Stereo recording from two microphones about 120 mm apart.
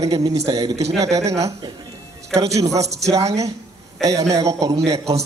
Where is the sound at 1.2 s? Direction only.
65° right (ahead or behind).